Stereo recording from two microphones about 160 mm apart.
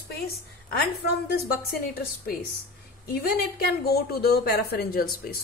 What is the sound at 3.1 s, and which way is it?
A woman's voice, 75° left (ahead or behind).